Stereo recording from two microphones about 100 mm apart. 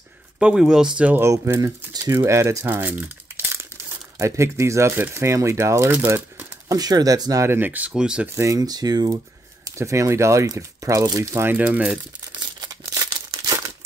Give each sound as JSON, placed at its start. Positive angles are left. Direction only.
{"t": 0.4, "sound": "speech", "side_deg": -10}
{"t": 1.2, "sound": "speech", "side_deg": -30}
{"t": 4.2, "sound": "speech", "side_deg": -30}
{"t": 5.9, "sound": "crumpling", "side_deg": -20}
{"t": 6.7, "sound": "speech", "side_deg": -40}
{"t": 7.4, "sound": "speech", "side_deg": -20}
{"t": 8.4, "sound": "speech", "side_deg": -35}
{"t": 9.7, "sound": "speech", "side_deg": -30}
{"t": 11.3, "sound": "speech", "side_deg": -20}
{"t": 12.4, "sound": "crumpling", "side_deg": -45}